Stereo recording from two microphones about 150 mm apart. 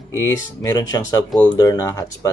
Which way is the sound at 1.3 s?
10° left (ahead or behind).